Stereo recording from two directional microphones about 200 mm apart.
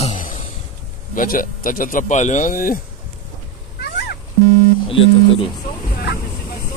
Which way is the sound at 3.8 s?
50° left (ahead or behind).